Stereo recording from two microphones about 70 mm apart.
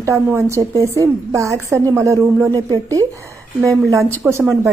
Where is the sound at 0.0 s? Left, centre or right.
Right.